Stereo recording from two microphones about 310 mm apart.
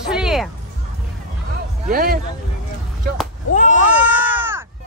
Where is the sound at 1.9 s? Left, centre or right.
Right.